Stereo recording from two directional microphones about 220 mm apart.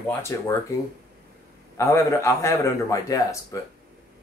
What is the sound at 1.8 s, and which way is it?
Speech, 15° left (ahead or behind).